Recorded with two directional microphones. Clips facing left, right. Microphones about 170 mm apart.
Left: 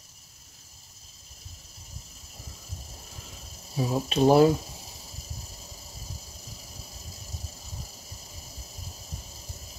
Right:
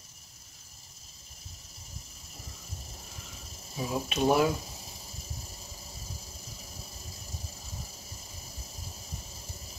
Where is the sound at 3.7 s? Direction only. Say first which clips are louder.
Left 5 dB; 35° left (ahead or behind).